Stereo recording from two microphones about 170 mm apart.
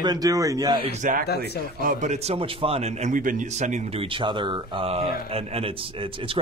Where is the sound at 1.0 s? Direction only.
50° right (ahead or behind).